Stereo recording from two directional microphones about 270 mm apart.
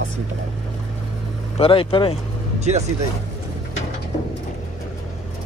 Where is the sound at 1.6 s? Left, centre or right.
Centre.